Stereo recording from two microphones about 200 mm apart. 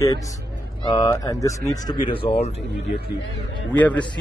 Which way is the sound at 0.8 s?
20° left (ahead or behind).